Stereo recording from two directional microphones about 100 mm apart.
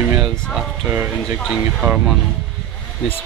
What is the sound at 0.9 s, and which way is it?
Speech, 20° right (ahead or behind).